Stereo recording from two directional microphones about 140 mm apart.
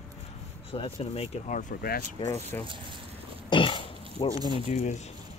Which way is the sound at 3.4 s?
35° left (ahead or behind).